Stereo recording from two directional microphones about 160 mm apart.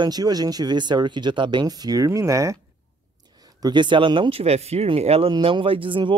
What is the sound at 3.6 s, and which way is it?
Speech, 30° right (ahead or behind).